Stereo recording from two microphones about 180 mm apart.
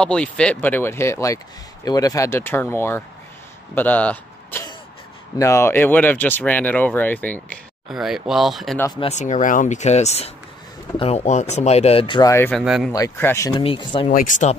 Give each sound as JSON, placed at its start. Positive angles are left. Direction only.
{"t": 0.0, "sound": "speech", "side_deg": 5}
{"t": 7.9, "sound": "speech", "side_deg": 0}
{"t": 9.0, "sound": "speech", "side_deg": 40}
{"t": 12.5, "sound": "speech", "side_deg": 0}
{"t": 12.9, "sound": "speech", "side_deg": 15}
{"t": 14.1, "sound": "speech", "side_deg": 45}